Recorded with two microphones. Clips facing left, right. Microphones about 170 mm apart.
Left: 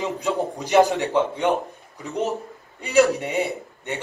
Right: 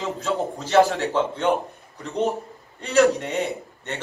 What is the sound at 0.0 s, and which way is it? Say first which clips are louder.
Speech: left 1 dB; 15° left (ahead or behind).